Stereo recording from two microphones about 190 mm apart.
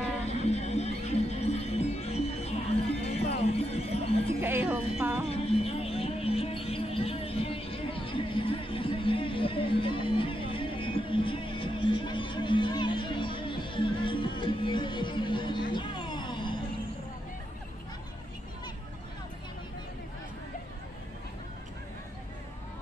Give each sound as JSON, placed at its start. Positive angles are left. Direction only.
{"t": 0.3, "sound": "music", "side_deg": 35}
{"t": 4.4, "sound": "music", "side_deg": -10}
{"t": 5.3, "sound": "music", "side_deg": 30}